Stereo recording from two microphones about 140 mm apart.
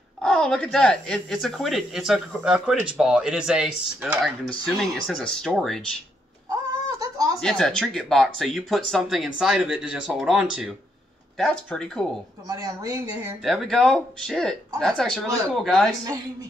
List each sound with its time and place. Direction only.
0.2 s speech: 5° left (ahead or behind)
6.5 s a sound: 25° right (ahead or behind)
7.3 s speech: 5° left (ahead or behind)
12.4 s speech: 25° right (ahead or behind)
13.4 s speech: centre (ahead or behind)